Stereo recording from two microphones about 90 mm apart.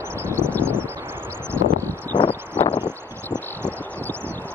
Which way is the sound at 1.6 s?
20° left (ahead or behind).